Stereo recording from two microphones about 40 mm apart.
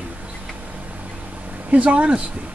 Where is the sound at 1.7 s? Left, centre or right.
Right.